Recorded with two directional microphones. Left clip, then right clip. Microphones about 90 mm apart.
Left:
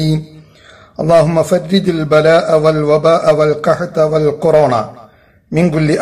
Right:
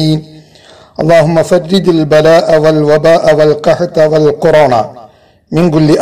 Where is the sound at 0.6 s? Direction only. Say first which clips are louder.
Right 4 dB; 30° right (ahead or behind).